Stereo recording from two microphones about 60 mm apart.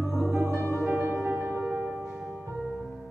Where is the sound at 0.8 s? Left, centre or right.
Right.